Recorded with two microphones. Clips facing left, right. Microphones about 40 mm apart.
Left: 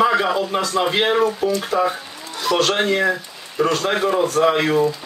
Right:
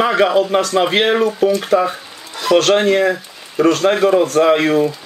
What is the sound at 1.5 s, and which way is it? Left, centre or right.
A man's voice, right.